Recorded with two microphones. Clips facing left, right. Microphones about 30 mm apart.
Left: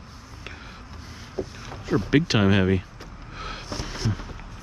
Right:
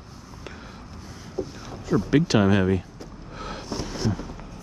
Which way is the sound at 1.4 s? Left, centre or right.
Left.